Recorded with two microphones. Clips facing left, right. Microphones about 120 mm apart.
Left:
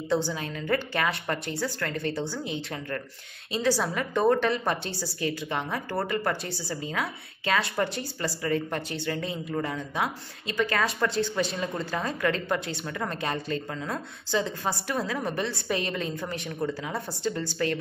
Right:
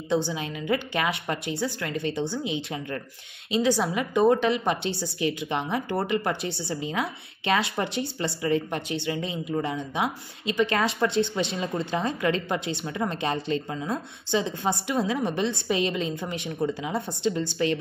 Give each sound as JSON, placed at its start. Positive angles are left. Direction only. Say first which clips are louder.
{"t": 0.3, "sound": "a woman's voice", "louder": "right 1 dB", "side_deg": -15}